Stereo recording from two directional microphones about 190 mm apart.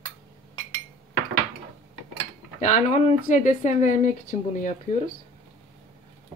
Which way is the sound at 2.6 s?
35° left (ahead or behind).